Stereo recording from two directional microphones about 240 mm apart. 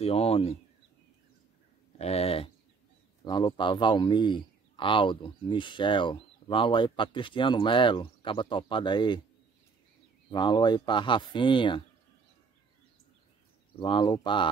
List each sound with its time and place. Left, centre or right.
0.0 s speech: left
2.0 s speech: left
10.3 s speech: centre
13.7 s speech: centre